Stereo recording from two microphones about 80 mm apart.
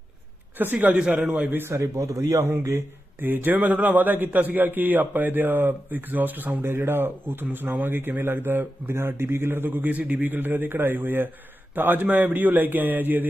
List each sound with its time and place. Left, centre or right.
0.6 s a man's voice: right
3.2 s a man's voice: right